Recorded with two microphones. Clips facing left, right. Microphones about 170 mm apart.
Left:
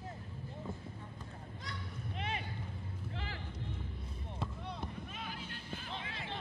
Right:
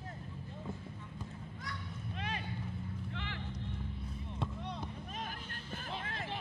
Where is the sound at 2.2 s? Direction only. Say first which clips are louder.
Left 1 dB; 25° left (ahead or behind).